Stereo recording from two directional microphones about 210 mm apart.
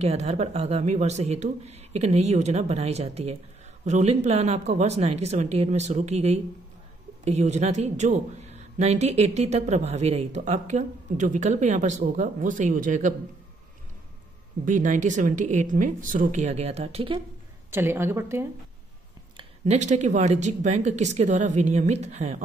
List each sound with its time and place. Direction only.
0.0 s a man's voice: 30° right (ahead or behind)
14.6 s a man's voice: 40° right (ahead or behind)
17.6 s a woman's voice: 10° right (ahead or behind)
19.3 s a man's voice: 30° right (ahead or behind)